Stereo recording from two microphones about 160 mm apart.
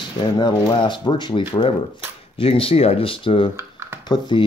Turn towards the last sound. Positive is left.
turn(degrees=30)  # may be behind; listen again after turning